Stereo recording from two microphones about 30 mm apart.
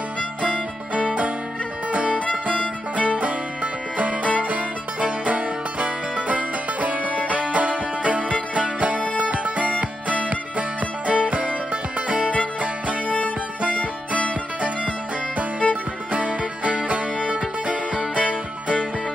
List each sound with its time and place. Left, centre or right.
0.4 s music: right
14.1 s music: right
15.6 s music: left
16.1 s music: right